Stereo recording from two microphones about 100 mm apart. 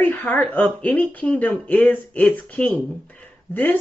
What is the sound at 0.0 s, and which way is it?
Speech, 15° left (ahead or behind).